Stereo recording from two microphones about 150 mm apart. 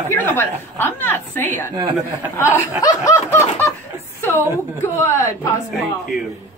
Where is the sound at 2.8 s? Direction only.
20° left (ahead or behind).